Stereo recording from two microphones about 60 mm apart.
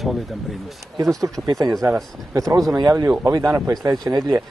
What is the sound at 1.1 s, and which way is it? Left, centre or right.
Speech, right.